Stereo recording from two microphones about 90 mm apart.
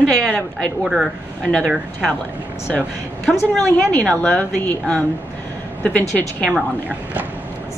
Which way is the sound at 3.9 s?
15° left (ahead or behind).